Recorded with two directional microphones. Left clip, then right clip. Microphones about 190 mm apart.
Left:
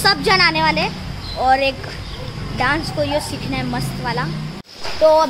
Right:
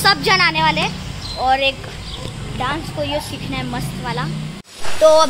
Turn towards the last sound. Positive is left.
turn(degrees=0)  # may be behind; listen again after turning